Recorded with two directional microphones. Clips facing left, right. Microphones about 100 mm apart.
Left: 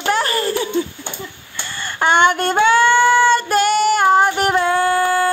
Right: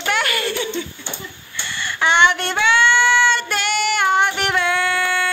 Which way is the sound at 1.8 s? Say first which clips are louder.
Left 2 dB; 45° left (ahead or behind).